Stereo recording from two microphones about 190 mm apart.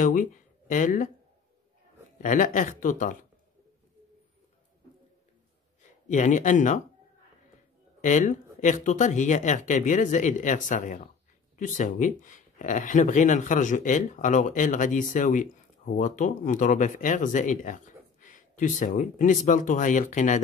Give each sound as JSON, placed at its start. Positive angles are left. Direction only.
{"t": 0.0, "sound": "speech", "side_deg": 40}
{"t": 2.2, "sound": "speech", "side_deg": 45}
{"t": 6.0, "sound": "speech", "side_deg": 40}
{"t": 8.0, "sound": "speech", "side_deg": 40}
{"t": 18.2, "sound": "a sound", "side_deg": 45}
{"t": 18.8, "sound": "speech", "side_deg": 45}